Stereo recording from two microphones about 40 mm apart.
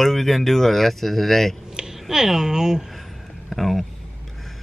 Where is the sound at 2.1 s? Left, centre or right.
Centre.